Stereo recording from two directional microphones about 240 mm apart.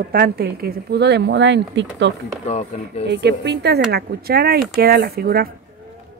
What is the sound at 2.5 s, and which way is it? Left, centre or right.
Speech, left.